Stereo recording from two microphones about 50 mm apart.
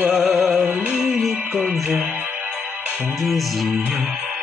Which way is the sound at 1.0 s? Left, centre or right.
Centre.